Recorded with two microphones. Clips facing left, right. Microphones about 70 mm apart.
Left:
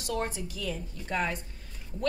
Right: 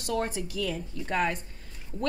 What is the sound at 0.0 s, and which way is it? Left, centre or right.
A woman's voice, right.